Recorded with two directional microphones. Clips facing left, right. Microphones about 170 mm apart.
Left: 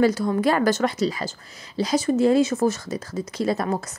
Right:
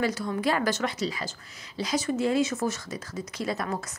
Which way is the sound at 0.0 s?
35° left (ahead or behind).